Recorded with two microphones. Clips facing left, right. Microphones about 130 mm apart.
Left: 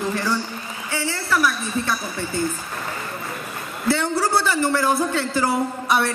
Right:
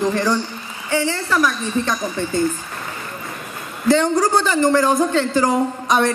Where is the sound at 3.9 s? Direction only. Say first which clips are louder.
Right 5 dB; 15° right (ahead or behind).